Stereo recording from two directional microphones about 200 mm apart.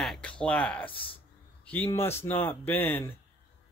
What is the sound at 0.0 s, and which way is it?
Speech, 5° left (ahead or behind).